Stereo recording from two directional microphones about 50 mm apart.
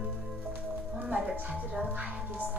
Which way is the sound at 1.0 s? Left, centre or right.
Right.